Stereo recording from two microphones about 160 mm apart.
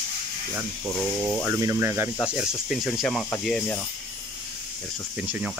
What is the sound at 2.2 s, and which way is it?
Speech, 5° right (ahead or behind).